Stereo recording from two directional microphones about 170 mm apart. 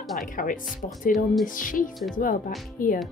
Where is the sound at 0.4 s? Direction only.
50° left (ahead or behind).